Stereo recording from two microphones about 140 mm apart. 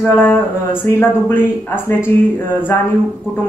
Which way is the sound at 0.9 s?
15° left (ahead or behind).